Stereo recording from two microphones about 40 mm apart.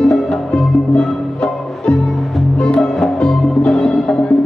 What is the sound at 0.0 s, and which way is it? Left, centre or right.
Music, left.